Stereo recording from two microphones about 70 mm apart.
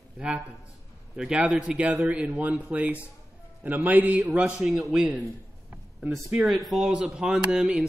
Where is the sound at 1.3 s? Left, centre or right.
Centre.